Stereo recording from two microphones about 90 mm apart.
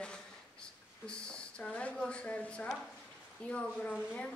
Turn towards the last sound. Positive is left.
turn(degrees=15)  # may be behind; listen again after turning